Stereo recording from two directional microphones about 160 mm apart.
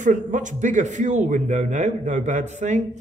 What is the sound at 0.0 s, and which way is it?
Speech, 50° right (ahead or behind).